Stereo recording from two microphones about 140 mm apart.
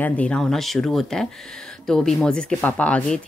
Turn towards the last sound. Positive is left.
turn(degrees=5)  # may be behind; listen again after turning